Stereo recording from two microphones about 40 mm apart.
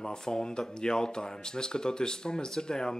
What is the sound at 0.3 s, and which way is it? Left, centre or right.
Speech, centre.